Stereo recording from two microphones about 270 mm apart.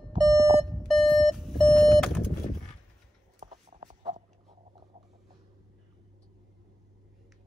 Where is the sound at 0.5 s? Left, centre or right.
Centre.